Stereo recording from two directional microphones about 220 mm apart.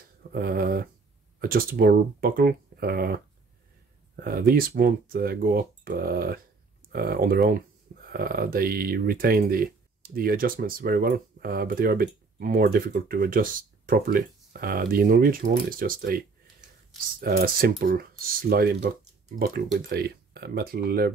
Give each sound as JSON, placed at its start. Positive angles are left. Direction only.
{"t": 0.3, "sound": "speech", "side_deg": -45}
{"t": 4.2, "sound": "speech", "side_deg": -45}
{"t": 17.2, "sound": "speech", "side_deg": -45}